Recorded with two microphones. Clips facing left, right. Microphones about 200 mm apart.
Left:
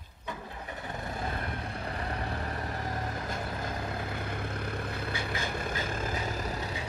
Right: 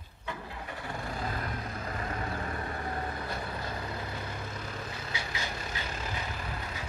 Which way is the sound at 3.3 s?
50° left (ahead or behind).